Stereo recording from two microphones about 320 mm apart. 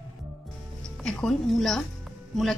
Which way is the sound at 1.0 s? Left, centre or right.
Centre.